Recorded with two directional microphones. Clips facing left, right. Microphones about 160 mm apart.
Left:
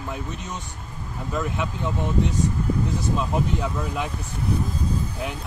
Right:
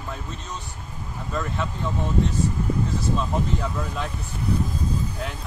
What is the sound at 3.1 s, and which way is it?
Speech, 10° left (ahead or behind).